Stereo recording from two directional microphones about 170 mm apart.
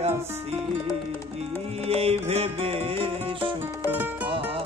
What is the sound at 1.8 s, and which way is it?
Music, 35° right (ahead or behind).